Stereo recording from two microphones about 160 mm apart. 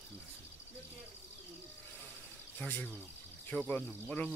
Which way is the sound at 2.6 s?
10° left (ahead or behind).